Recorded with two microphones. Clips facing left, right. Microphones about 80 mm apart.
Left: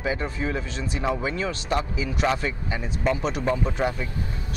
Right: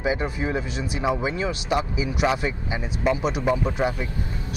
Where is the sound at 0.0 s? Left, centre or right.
Centre.